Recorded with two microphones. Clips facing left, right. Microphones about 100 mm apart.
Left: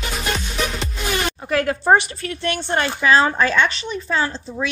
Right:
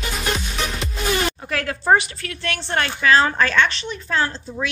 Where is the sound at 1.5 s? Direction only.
25° left (ahead or behind); by 4.6 s 5° left (ahead or behind).